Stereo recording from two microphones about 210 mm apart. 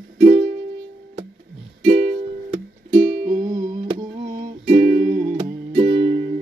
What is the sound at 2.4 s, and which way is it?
Music, 30° right (ahead or behind).